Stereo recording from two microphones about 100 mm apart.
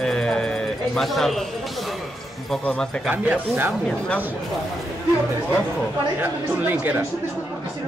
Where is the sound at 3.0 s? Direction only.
15° right (ahead or behind).